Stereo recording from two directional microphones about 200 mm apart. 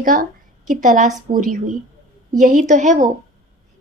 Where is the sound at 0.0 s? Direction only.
40° right (ahead or behind).